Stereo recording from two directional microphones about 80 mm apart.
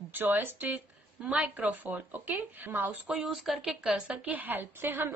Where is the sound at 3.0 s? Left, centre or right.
Centre.